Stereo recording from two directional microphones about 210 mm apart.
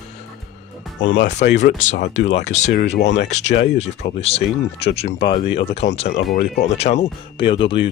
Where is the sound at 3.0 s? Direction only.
55° left (ahead or behind).